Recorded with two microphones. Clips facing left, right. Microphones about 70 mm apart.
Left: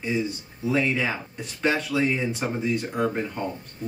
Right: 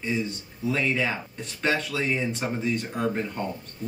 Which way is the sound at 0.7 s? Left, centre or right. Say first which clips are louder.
Left 2 dB; centre.